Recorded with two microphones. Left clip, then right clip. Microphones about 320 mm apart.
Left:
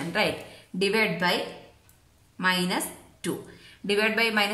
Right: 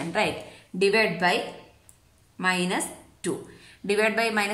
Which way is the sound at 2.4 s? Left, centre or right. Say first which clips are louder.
Even; centre.